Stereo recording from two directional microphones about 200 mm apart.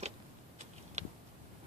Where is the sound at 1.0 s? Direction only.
35° right (ahead or behind).